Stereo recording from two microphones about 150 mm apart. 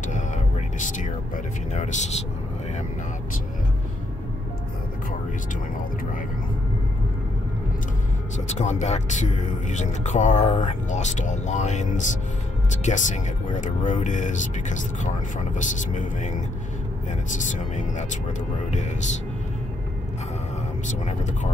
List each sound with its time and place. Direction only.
1.7 s speech: 50° left (ahead or behind)
8.5 s speech: 50° left (ahead or behind)
20.8 s speech: 55° left (ahead or behind)